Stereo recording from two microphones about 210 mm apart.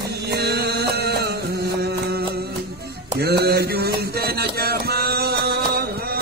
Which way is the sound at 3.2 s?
50° right (ahead or behind).